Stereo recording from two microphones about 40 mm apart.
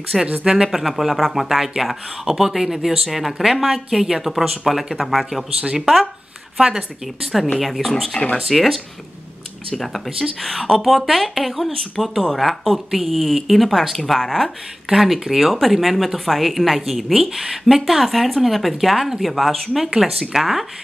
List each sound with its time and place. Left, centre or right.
0.4 s speech: centre
0.7 s speech: centre
7.5 s speech: centre
8.1 s speech: centre
8.5 s speech: centre
10.0 s speech: centre
10.4 s speech: centre
14.9 s speech: centre